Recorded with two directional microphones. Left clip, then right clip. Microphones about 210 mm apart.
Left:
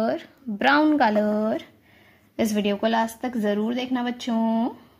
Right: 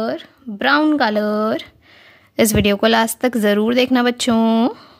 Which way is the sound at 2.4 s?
40° right (ahead or behind).